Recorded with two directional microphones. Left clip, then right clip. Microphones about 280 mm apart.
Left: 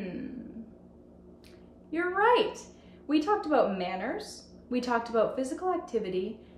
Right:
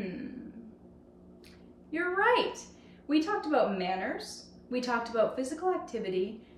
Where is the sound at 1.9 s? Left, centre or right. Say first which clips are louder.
Left 2 dB; centre.